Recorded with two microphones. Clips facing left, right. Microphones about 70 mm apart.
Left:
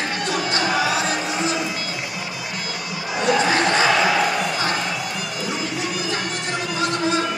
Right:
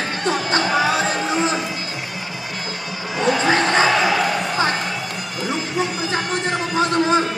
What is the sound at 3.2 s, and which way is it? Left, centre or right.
Crowd, right.